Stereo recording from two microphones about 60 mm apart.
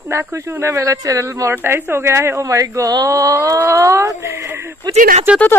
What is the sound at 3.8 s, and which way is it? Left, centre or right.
Speech, right.